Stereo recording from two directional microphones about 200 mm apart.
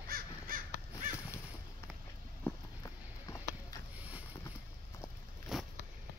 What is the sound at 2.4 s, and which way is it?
Walk, 15° left (ahead or behind).